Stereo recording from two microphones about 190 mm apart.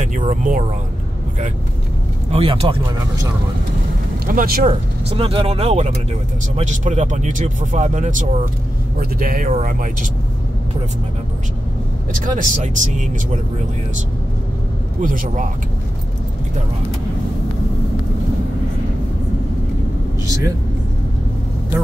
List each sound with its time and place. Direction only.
0.0 s speech: 40° right (ahead or behind)
2.3 s speech: 30° right (ahead or behind)
4.3 s speech: 50° right (ahead or behind)
4.6 s speech: 30° right (ahead or behind); by 10.0 s 45° right (ahead or behind)
12.1 s speech: 45° right (ahead or behind)
15.0 s speech: 45° right (ahead or behind)